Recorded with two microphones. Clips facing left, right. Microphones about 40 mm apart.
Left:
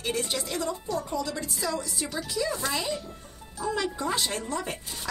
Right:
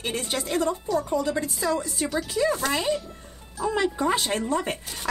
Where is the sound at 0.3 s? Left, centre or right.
Right.